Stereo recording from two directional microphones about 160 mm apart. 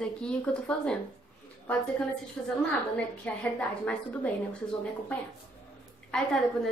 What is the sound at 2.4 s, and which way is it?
A woman's voice, centre (ahead or behind).